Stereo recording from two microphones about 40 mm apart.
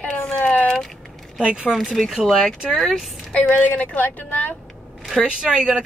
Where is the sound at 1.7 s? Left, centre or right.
Centre.